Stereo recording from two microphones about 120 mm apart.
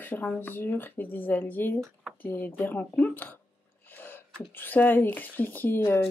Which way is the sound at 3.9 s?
15° left (ahead or behind).